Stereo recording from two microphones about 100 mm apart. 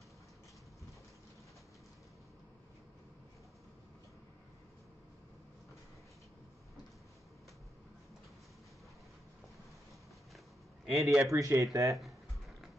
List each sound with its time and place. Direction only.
10.9 s speech: centre (ahead or behind)
11.3 s speech: 35° right (ahead or behind)
12.0 s typing: centre (ahead or behind)